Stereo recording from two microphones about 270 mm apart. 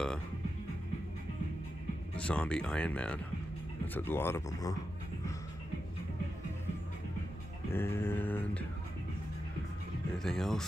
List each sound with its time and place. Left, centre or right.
2.1 s speech: centre
7.7 s speech: centre
10.1 s speech: centre